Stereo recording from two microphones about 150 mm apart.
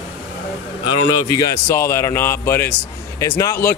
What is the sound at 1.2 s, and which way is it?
Speech, 20° left (ahead or behind).